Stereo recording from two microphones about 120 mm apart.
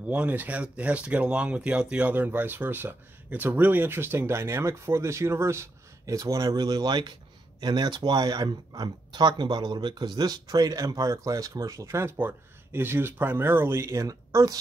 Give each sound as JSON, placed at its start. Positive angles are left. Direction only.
{"t": 0.1, "sound": "speech", "side_deg": -15}